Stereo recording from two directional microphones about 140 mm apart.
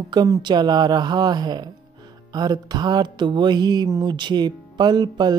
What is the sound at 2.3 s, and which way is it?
Music, 30° right (ahead or behind).